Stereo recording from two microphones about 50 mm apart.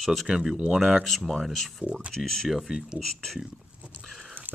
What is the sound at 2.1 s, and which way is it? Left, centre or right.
Speech, centre.